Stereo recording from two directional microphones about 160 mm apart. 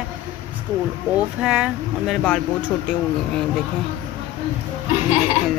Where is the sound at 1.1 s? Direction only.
5° right (ahead or behind).